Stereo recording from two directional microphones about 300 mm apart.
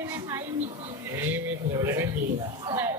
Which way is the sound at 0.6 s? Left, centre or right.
Right.